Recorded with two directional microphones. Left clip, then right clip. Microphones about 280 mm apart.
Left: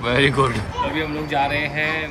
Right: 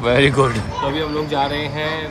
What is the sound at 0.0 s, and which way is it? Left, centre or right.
Speech, centre.